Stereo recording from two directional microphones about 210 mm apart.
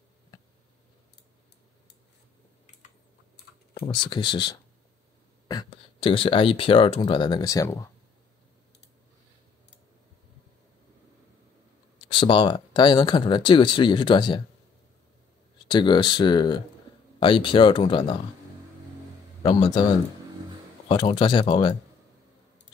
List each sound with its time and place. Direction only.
3.8 s speech: 20° left (ahead or behind)
12.1 s speech: 25° left (ahead or behind)
15.7 s speech: 20° left (ahead or behind)
19.4 s speech: 20° left (ahead or behind)
20.9 s speech: 25° left (ahead or behind)